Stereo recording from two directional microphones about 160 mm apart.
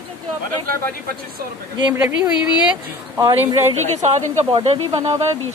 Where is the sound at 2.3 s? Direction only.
25° left (ahead or behind).